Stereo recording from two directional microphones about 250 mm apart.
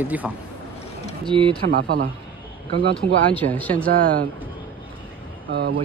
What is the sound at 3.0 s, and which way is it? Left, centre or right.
Speech, centre.